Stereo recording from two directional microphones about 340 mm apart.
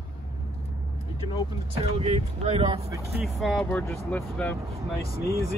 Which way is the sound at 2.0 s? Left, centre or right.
Centre.